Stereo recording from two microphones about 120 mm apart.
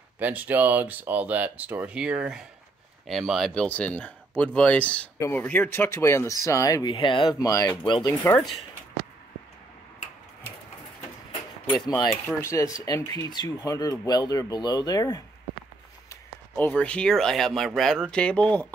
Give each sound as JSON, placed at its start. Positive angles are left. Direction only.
{"t": 0.2, "sound": "speech", "side_deg": -15}
{"t": 3.6, "sound": "speech", "side_deg": 10}
{"t": 7.3, "sound": "speech", "side_deg": 30}
{"t": 11.9, "sound": "speech", "side_deg": 5}
{"t": 12.4, "sound": "speech", "side_deg": 25}
{"t": 16.5, "sound": "speech", "side_deg": 10}